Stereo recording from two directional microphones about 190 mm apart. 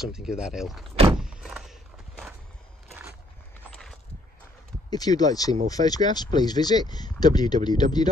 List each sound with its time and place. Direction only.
0.0 s speech: 5° right (ahead or behind)
1.1 s door: 5° right (ahead or behind)
3.7 s a sound: centre (ahead or behind)
4.8 s speech: 20° left (ahead or behind)